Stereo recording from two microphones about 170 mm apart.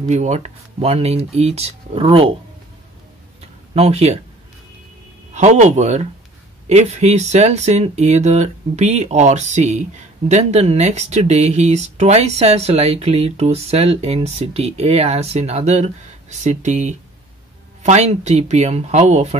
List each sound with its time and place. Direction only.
0.0 s speech: 40° right (ahead or behind)
3.3 s a sound: 40° right (ahead or behind)
5.3 s speech: 45° right (ahead or behind)